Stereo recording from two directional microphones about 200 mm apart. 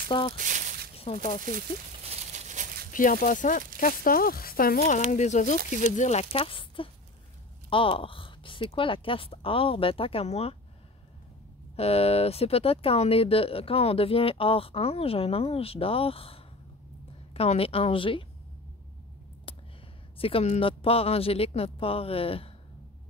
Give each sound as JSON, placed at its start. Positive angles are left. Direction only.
{"t": 0.1, "sound": "speech", "side_deg": 25}
{"t": 0.4, "sound": "squish", "side_deg": -40}
{"t": 0.9, "sound": "speech", "side_deg": 35}
{"t": 2.0, "sound": "a sound", "side_deg": -35}
{"t": 2.9, "sound": "speech", "side_deg": 40}
{"t": 11.7, "sound": "speech", "side_deg": 30}
{"t": 20.2, "sound": "speech", "side_deg": 30}